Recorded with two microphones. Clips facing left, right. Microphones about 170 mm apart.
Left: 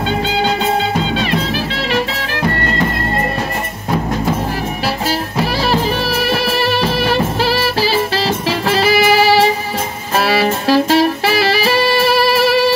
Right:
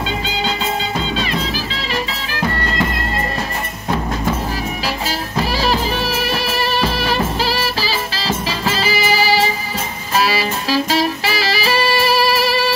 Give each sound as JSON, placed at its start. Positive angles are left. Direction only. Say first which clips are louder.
{"t": 0.3, "sound": "music", "louder": "left 6 dB", "side_deg": 60}
{"t": 5.4, "sound": "music", "louder": "left 2 dB", "side_deg": 60}